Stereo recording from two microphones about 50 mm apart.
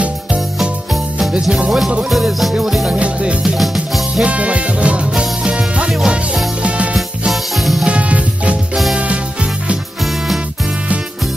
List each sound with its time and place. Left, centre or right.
2.0 s music: centre
2.9 s music: right
3.5 s music: centre
4.2 s music: right
5.9 s music: centre
6.6 s music: right
7.5 s music: centre
7.8 s music: right